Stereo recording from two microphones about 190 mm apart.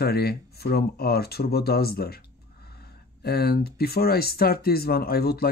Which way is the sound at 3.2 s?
55° left (ahead or behind).